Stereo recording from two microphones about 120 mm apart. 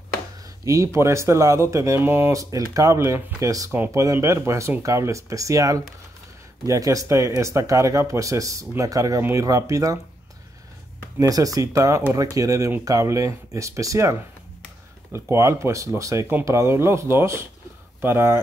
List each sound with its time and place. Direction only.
0.7 s speech: 25° right (ahead or behind)
11.1 s speech: 30° right (ahead or behind)
15.1 s speech: 20° right (ahead or behind)